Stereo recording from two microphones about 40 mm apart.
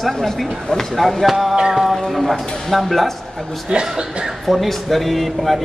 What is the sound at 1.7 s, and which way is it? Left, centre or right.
Music, centre.